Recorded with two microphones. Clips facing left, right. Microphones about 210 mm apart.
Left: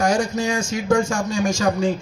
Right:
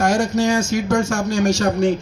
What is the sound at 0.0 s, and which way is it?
Speech, 70° right (ahead or behind).